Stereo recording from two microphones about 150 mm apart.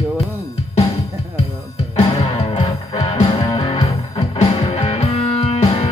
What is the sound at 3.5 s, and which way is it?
Music, 35° left (ahead or behind).